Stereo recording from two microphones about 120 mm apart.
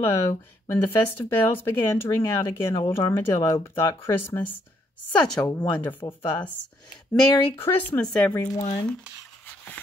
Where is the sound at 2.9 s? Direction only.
20° left (ahead or behind).